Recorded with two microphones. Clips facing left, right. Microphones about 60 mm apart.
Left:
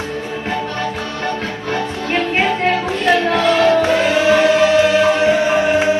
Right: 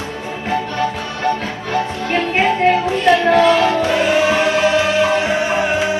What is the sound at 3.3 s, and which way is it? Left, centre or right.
Music, right.